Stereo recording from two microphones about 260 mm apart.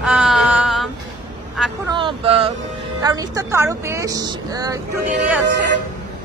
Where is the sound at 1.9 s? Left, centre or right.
Centre.